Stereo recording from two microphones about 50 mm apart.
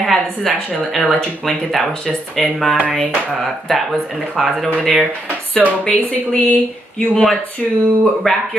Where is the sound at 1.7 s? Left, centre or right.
Centre.